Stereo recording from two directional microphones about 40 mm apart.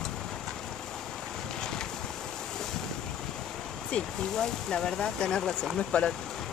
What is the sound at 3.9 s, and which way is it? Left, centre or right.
Speech, left.